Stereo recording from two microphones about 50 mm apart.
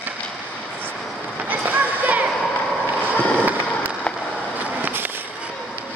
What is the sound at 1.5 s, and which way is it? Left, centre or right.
Run, right.